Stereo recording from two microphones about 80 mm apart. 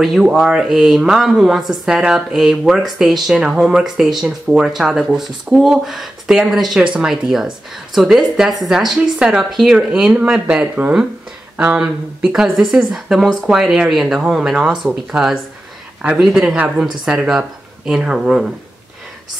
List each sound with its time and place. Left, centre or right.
0.0 s speech: centre
11.5 s a sound: right
11.8 s speech: centre
16.5 s speech: centre
16.8 s speech: centre